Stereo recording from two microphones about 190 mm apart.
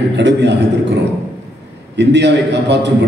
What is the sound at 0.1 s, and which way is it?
Speech, 65° right (ahead or behind).